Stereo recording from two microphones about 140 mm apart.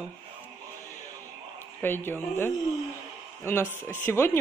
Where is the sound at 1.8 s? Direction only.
15° left (ahead or behind).